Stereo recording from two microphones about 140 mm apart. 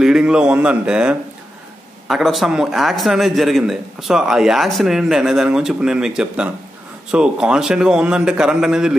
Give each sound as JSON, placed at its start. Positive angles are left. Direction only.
{"t": 0.0, "sound": "a man's voice", "side_deg": -5}